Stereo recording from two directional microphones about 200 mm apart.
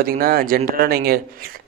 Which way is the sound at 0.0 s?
50° right (ahead or behind).